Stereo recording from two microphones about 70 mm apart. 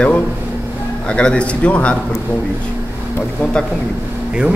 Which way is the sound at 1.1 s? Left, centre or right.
Centre.